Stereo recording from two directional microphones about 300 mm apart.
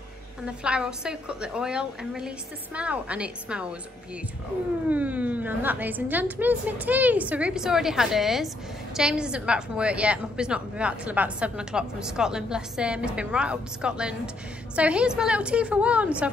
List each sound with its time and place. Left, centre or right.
0.5 s a woman's voice: centre
4.8 s a woman's voice: centre